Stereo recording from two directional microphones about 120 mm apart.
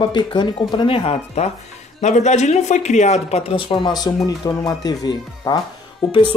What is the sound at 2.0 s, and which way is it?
Speech, 80° left.